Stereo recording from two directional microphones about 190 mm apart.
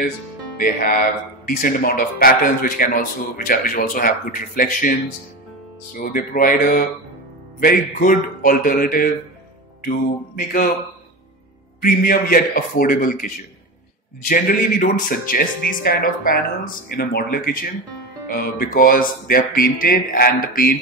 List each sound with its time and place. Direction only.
0.6 s speech: 50° left (ahead or behind)
5.9 s speech: 45° left (ahead or behind)
11.8 s speech: 50° left (ahead or behind)